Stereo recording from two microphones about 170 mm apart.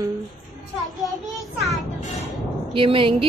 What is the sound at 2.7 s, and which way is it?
Speech, 30° right (ahead or behind).